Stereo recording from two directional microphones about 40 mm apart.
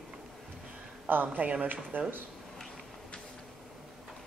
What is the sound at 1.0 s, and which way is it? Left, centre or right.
Speech, right.